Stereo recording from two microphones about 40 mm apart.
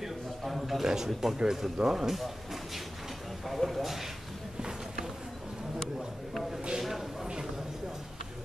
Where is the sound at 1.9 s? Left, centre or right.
Centre.